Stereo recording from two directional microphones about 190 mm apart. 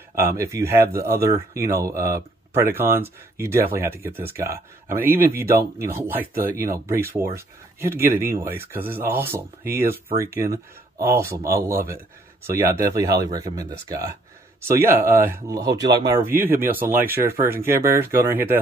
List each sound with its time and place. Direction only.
0.4 s speech: 15° right (ahead or behind)